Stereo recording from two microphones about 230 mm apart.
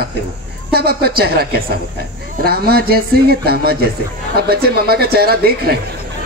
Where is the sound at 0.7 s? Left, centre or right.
Right.